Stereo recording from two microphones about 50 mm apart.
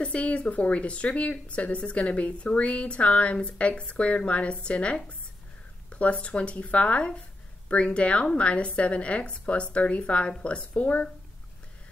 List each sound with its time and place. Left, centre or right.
0.0 s speech: left